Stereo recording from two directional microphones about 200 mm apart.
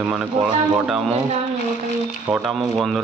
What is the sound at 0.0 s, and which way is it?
Speech, 5° right (ahead or behind).